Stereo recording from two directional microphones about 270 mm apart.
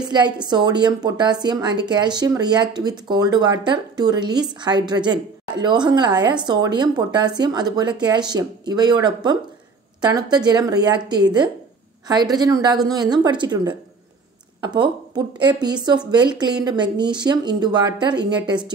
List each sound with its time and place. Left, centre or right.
0.0 s a woman's voice: centre